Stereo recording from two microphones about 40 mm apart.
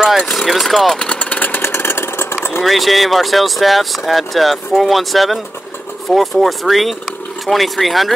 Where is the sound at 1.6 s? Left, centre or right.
Left.